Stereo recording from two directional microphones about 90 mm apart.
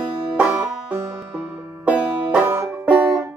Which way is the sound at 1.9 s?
10° right (ahead or behind).